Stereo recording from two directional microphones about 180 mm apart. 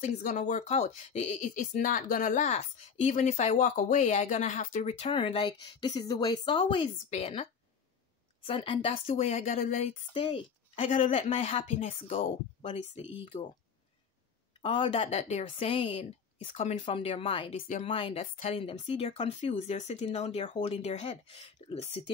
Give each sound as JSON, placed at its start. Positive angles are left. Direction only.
{"t": 0.2, "sound": "speech", "side_deg": 45}
{"t": 8.5, "sound": "speech", "side_deg": 30}
{"t": 10.1, "sound": "speech", "side_deg": 30}
{"t": 14.6, "sound": "speech", "side_deg": 30}